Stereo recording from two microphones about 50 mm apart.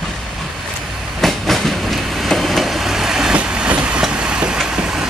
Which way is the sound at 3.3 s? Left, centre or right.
Right.